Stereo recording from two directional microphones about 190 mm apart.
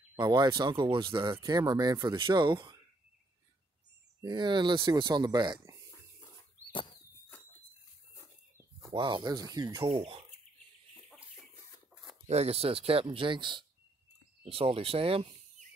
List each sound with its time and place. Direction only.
0.1 s speech: 15° right (ahead or behind)
4.2 s speech: 25° right (ahead or behind)
7.3 s a sound: 10° left (ahead or behind)
8.9 s speech: 25° right (ahead or behind)
11.9 s a sound: centre (ahead or behind)
12.3 s speech: 35° right (ahead or behind)